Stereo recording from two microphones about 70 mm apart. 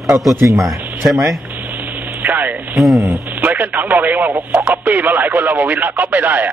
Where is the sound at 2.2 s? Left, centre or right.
Right.